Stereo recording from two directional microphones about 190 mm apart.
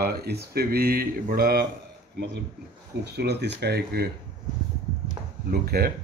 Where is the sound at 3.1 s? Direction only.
60° right (ahead or behind).